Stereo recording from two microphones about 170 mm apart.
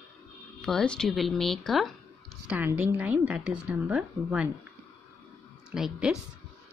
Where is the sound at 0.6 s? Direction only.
5° left (ahead or behind).